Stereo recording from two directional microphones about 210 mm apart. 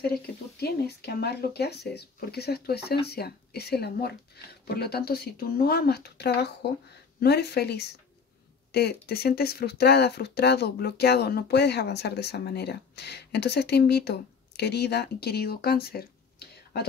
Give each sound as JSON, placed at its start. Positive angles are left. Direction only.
{"t": 0.6, "sound": "speech", "side_deg": 50}